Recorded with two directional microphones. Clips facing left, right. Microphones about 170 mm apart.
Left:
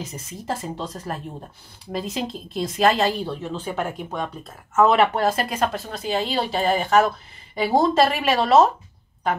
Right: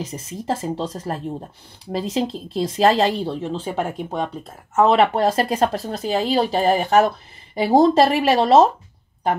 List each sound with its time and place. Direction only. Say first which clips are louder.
0.1 s speech: right 4 dB; 30° right (ahead or behind)